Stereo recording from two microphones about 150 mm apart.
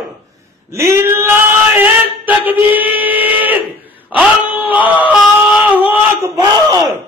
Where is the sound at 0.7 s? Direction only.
15° right (ahead or behind).